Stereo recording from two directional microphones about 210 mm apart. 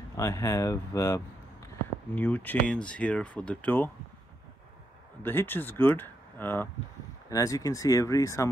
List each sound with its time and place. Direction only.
0.1 s speech: 15° left (ahead or behind)
5.2 s speech: 10° left (ahead or behind)